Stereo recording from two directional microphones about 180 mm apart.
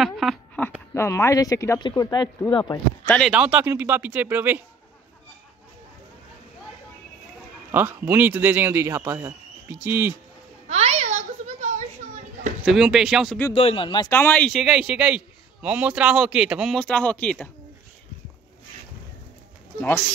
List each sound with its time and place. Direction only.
0.0 s a sound: centre (ahead or behind)
0.9 s speech: 15° left (ahead or behind)
3.1 s a man's voice: centre (ahead or behind)
7.7 s a man's voice: 10° right (ahead or behind)
10.7 s a sound: 35° right (ahead or behind)
12.6 s a man's voice: centre (ahead or behind)
13.6 s speech: 30° left (ahead or behind)
14.0 s a man's voice: 10° left (ahead or behind)